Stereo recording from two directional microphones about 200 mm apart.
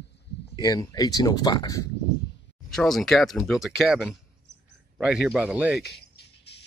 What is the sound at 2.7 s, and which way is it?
Speech, centre (ahead or behind).